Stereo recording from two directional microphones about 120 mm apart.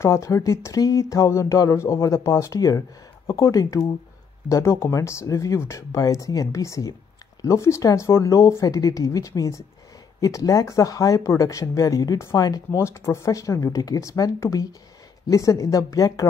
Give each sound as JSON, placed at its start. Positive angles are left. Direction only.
{"t": 0.0, "sound": "speech", "side_deg": 25}